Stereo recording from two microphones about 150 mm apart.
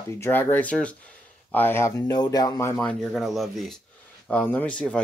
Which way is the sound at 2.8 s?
5° left (ahead or behind).